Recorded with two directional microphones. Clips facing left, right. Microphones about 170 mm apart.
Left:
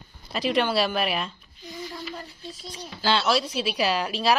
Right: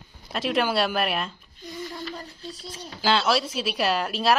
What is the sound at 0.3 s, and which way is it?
Speech, centre (ahead or behind).